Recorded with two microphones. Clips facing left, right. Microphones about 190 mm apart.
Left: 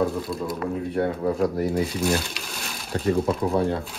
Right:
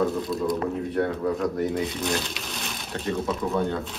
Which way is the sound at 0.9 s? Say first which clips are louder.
Left 2 dB; 30° left (ahead or behind).